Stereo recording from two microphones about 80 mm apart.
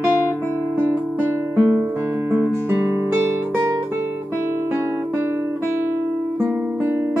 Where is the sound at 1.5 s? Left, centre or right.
Right.